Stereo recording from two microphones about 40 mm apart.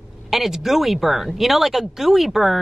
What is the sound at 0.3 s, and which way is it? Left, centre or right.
Speech, centre.